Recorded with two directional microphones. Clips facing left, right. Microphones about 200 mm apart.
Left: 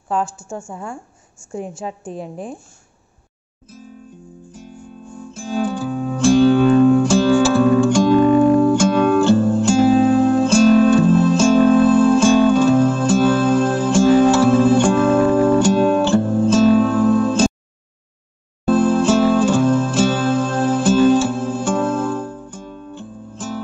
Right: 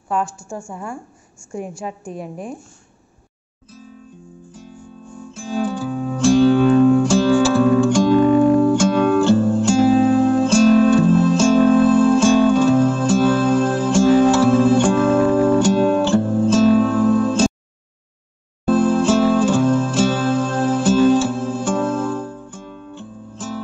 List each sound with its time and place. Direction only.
0.2 s a woman's voice: 5° left (ahead or behind)
2.2 s a woman's voice: centre (ahead or behind)
5.3 s music: 50° left (ahead or behind)
18.7 s music: 50° left (ahead or behind)
22.5 s music: 40° left (ahead or behind)